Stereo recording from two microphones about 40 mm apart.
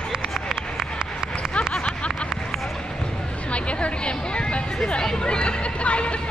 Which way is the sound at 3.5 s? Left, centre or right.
Left.